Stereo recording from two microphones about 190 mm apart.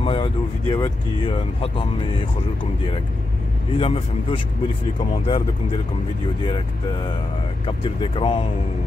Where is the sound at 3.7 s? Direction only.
30° left (ahead or behind).